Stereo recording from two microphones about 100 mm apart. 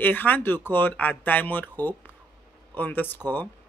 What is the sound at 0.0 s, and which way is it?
Speech, 20° left (ahead or behind).